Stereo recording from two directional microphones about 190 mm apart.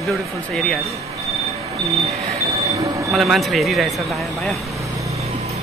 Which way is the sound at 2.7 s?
15° right (ahead or behind).